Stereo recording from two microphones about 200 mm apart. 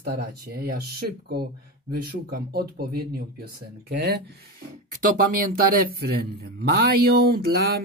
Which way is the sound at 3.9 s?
55° right (ahead or behind).